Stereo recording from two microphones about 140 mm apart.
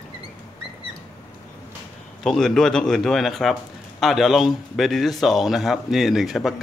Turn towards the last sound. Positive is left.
turn(degrees=0)  # may be behind; listen again after turning